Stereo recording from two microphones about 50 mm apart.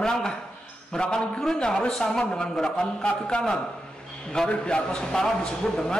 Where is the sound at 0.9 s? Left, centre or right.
Centre.